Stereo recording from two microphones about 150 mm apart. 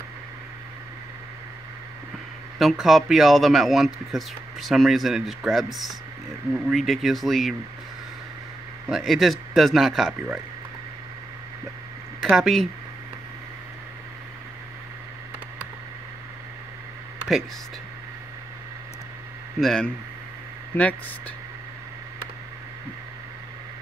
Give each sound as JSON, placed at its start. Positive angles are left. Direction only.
{"t": 2.6, "sound": "speech", "side_deg": 0}
{"t": 8.8, "sound": "speech", "side_deg": 0}
{"t": 12.2, "sound": "speech", "side_deg": 0}
{"t": 19.6, "sound": "speech", "side_deg": 5}